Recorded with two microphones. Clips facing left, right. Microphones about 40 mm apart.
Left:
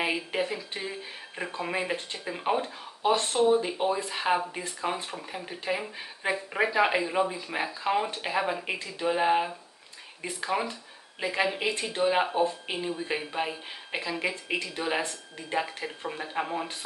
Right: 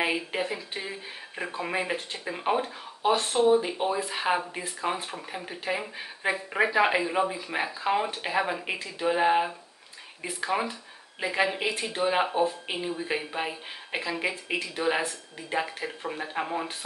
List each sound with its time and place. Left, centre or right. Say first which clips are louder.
0.0 s speech: right 1 dB; centre